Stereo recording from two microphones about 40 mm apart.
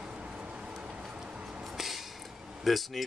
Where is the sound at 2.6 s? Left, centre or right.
Centre.